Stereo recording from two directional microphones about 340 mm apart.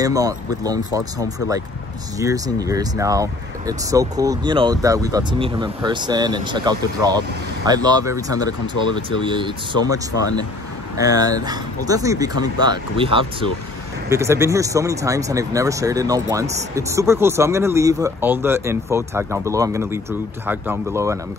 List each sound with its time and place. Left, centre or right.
0.0 s speech: centre
2.1 s speech: centre
8.8 s speech: left
9.2 s speech: centre